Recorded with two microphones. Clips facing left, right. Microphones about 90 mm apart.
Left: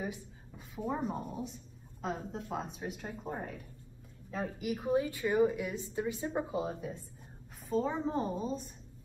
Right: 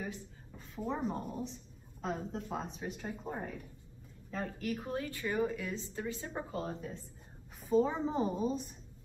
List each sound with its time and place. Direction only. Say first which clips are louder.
0.0 s a woman's voice: left 2 dB; 10° left (ahead or behind)
7.6 s a woman's voice: right 2 dB; 5° right (ahead or behind)